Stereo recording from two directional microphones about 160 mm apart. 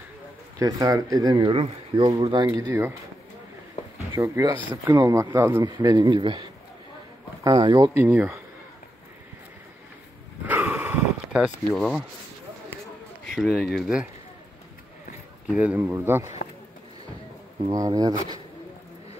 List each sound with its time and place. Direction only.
0.6 s speech: 20° right (ahead or behind)
4.1 s speech: 20° right (ahead or behind)
7.9 s speech: 15° right (ahead or behind)
10.4 s sniff: 10° right (ahead or behind)
13.3 s speech: centre (ahead or behind)
15.4 s speech: 10° right (ahead or behind)
17.6 s speech: 20° right (ahead or behind)